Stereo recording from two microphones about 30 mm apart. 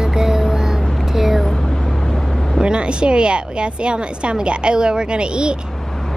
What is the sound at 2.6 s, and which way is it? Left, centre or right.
Speech, right.